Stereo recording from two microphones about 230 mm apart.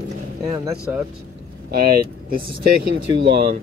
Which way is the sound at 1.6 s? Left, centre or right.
Right.